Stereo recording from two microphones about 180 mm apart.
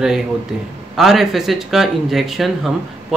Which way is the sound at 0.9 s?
Centre (ahead or behind).